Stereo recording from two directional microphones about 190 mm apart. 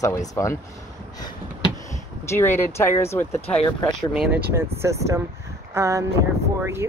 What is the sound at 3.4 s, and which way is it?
Speech, 25° left (ahead or behind).